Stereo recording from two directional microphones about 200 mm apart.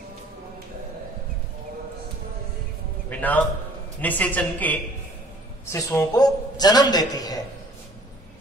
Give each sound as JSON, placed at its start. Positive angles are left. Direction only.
{"t": 3.1, "sound": "a man's voice", "side_deg": 10}